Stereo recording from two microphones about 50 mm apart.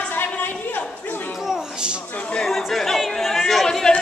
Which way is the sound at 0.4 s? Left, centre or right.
Left.